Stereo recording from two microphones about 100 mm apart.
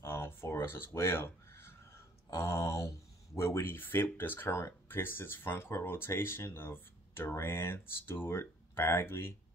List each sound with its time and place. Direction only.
0.0 s crow: 25° left (ahead or behind)
3.3 s speech: 25° left (ahead or behind)